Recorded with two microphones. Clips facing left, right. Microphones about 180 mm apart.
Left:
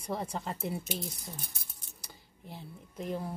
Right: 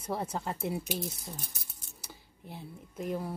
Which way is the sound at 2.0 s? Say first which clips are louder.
Right 2 dB; 5° right (ahead or behind).